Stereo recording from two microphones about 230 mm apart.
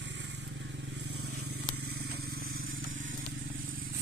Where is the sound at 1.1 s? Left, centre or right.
Right.